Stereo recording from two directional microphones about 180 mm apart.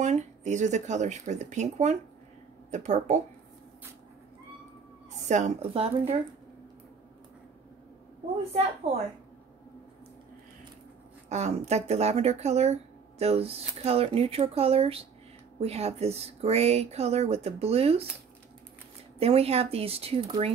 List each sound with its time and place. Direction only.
0.0 s speech: 40° right (ahead or behind)
5.3 s speech: 40° right (ahead or behind)
11.2 s speech: 40° right (ahead or behind)
19.1 s speech: 35° right (ahead or behind)